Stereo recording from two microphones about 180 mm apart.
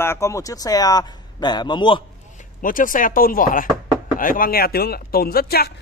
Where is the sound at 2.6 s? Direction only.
50° left (ahead or behind).